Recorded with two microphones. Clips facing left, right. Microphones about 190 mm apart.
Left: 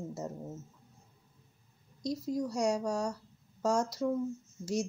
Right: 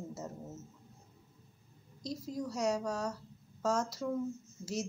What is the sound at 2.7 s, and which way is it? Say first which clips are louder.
Speech: left 3 dB; 10° left (ahead or behind).